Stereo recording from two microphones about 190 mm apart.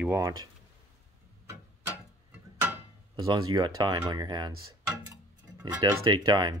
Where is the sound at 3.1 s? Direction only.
20° right (ahead or behind).